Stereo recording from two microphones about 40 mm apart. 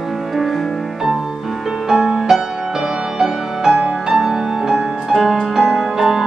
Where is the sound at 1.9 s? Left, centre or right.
Centre.